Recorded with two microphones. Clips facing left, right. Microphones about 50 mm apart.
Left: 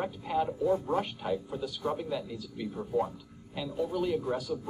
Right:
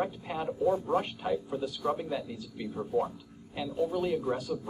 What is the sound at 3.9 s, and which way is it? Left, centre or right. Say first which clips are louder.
Speech: left 3 dB; centre.